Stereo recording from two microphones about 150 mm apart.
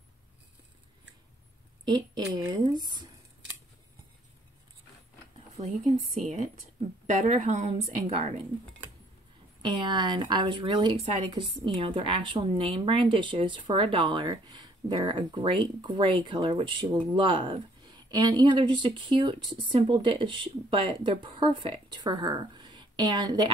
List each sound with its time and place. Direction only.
1.9 s speech: 30° right (ahead or behind)
5.6 s a woman's voice: 50° right (ahead or behind)
9.6 s speech: 30° right (ahead or behind)